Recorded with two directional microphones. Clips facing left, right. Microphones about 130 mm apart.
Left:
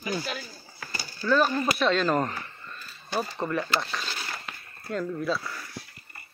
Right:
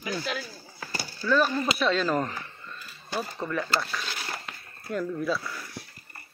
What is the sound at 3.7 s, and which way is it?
Speech, 20° left (ahead or behind).